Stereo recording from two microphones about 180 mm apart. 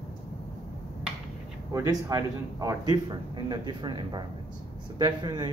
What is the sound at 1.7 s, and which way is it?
A man's voice, 20° right (ahead or behind).